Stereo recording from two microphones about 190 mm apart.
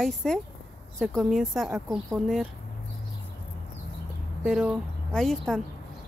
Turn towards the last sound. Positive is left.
turn(degrees=0)  # may be behind; listen again after turning